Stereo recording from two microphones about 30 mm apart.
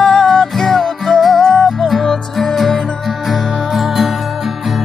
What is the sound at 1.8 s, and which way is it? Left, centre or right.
Music, centre.